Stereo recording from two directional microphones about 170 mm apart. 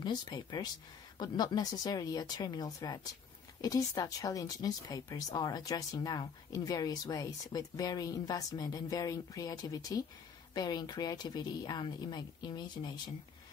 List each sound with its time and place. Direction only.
0.0 s speech: 25° left (ahead or behind)